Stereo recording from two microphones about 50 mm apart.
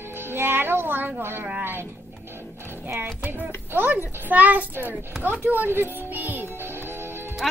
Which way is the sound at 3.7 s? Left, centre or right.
Right.